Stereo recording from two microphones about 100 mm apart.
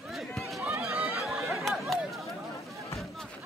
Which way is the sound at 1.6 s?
Centre (ahead or behind).